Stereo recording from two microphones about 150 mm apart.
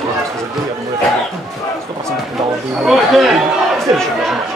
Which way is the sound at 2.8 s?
Centre (ahead or behind).